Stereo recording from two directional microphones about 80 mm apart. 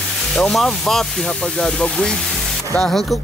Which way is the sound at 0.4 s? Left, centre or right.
Centre.